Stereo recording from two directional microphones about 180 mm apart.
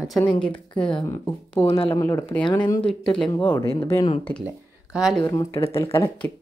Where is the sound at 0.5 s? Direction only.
30° left (ahead or behind).